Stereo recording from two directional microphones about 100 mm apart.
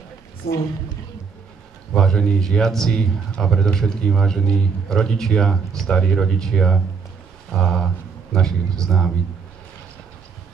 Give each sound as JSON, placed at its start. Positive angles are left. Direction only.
{"t": 2.0, "sound": "a man's voice", "side_deg": 5}